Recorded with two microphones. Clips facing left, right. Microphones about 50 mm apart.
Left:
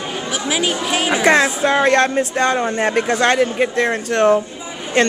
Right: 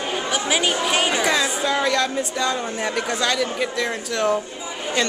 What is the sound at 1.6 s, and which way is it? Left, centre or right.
Speech, left.